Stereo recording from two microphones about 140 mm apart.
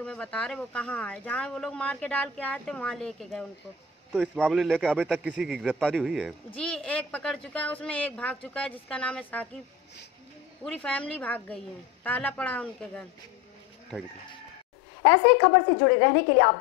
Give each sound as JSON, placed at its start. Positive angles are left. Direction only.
{"t": 0.0, "sound": "a man's voice", "side_deg": 5}
{"t": 10.6, "sound": "speech", "side_deg": 5}
{"t": 15.4, "sound": "a woman's voice", "side_deg": 45}